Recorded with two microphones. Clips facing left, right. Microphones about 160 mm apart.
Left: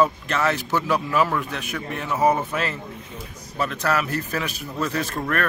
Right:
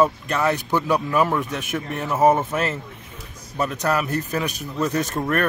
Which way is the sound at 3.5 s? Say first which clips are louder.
Right 1 dB; 15° right (ahead or behind).